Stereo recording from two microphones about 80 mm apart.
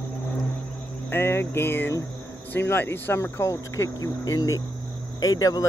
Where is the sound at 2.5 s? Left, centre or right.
Left.